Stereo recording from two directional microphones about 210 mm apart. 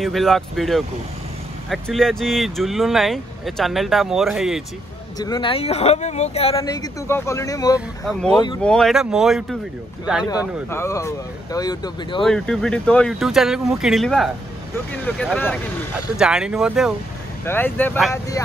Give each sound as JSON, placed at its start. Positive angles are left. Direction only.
{"t": 0.0, "sound": "speech", "side_deg": 0}
{"t": 5.2, "sound": "speech", "side_deg": 20}
{"t": 6.6, "sound": "speech", "side_deg": 15}
{"t": 8.0, "sound": "speech", "side_deg": 0}
{"t": 10.7, "sound": "speech", "side_deg": 15}
{"t": 12.3, "sound": "speech", "side_deg": 5}
{"t": 16.2, "sound": "speech", "side_deg": -5}
{"t": 17.5, "sound": "speech", "side_deg": 10}